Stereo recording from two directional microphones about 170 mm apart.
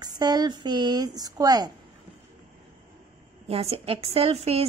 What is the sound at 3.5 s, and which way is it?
Speech, 35° right (ahead or behind).